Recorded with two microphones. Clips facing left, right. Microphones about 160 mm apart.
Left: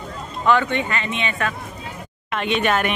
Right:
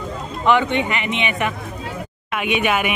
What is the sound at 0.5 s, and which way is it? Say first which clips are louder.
Speech: right 2 dB; 20° right (ahead or behind).